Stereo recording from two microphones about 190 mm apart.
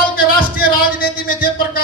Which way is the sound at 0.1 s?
50° left (ahead or behind).